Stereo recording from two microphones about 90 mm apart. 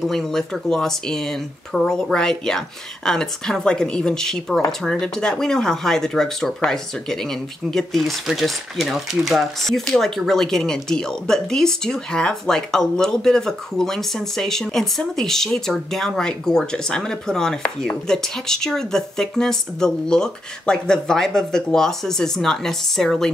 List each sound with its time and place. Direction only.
0.0 s speech: 5° left (ahead or behind)